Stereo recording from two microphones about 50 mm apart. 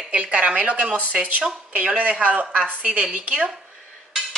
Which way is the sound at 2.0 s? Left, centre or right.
Right.